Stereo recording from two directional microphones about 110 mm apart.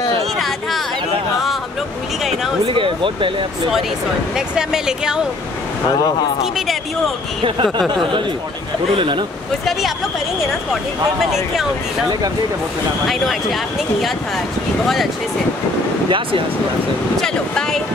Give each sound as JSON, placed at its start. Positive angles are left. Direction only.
{"t": 0.4, "sound": "a sound", "side_deg": 0}
{"t": 2.6, "sound": "speech", "side_deg": -50}
{"t": 4.4, "sound": "speech", "side_deg": -5}
{"t": 6.4, "sound": "speech", "side_deg": 0}
{"t": 7.4, "sound": "speech", "side_deg": -50}
{"t": 8.9, "sound": "speech", "side_deg": -50}
{"t": 9.7, "sound": "speech", "side_deg": 0}
{"t": 13.0, "sound": "speech", "side_deg": 0}
{"t": 16.1, "sound": "speech", "side_deg": -50}
{"t": 17.2, "sound": "speech", "side_deg": 5}